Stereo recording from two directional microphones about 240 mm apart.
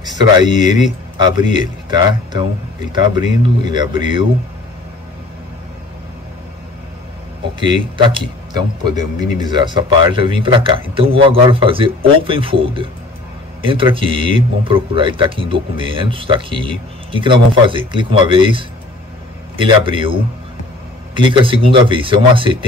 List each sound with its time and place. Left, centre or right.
0.0 s a sound: centre
1.1 s speech: centre
7.6 s speech: centre